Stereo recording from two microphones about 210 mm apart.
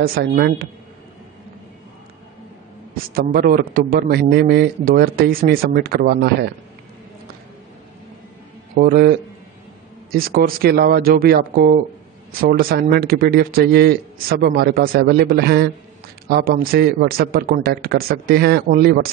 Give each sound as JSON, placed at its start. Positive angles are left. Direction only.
{"t": 0.0, "sound": "a man's voice", "side_deg": -45}
{"t": 3.2, "sound": "a man's voice", "side_deg": -45}
{"t": 8.7, "sound": "a man's voice", "side_deg": -45}
{"t": 10.1, "sound": "a man's voice", "side_deg": -45}